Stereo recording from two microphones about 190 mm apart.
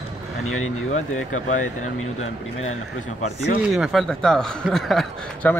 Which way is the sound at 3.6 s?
5° right (ahead or behind).